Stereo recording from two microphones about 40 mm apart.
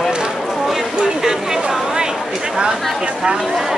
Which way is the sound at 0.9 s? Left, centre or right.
Centre.